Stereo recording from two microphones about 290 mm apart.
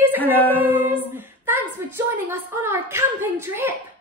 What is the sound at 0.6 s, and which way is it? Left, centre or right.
Singing, centre.